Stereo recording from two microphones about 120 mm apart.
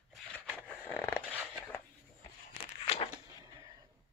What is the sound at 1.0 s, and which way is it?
Dog, 15° left (ahead or behind).